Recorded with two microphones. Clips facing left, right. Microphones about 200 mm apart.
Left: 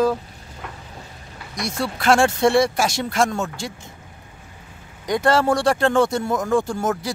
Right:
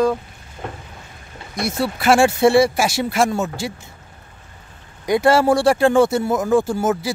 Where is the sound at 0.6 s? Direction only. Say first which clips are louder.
Right 6 dB; 30° right (ahead or behind).